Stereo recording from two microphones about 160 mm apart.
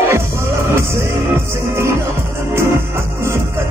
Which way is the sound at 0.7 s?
15° right (ahead or behind).